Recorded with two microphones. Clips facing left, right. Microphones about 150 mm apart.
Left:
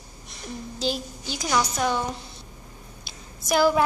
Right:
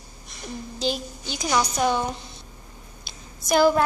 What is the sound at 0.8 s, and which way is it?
Speech, 5° left (ahead or behind).